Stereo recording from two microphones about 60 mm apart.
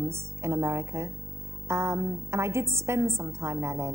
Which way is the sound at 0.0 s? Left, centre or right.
Right.